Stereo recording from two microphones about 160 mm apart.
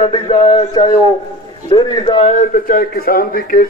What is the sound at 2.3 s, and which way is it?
A man's voice, 55° left (ahead or behind).